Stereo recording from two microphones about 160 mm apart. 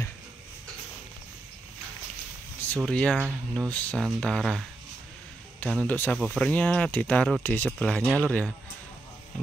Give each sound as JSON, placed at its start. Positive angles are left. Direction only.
{"t": 2.8, "sound": "speech", "side_deg": 5}
{"t": 5.7, "sound": "speech", "side_deg": 10}